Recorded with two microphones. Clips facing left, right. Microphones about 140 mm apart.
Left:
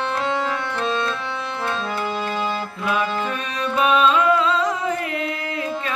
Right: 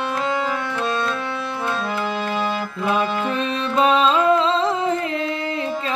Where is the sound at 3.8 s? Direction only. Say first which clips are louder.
Right 1 dB; 30° right (ahead or behind).